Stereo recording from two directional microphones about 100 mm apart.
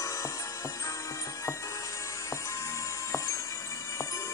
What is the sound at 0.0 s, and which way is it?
Music, 30° left (ahead or behind).